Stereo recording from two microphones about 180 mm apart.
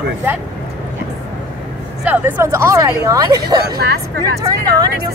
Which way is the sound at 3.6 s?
65° right (ahead or behind).